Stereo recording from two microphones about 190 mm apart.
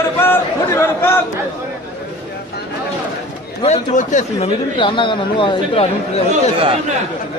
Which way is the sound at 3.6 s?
35° left (ahead or behind).